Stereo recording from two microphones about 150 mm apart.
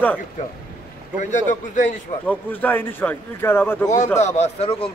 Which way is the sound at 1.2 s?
55° left (ahead or behind).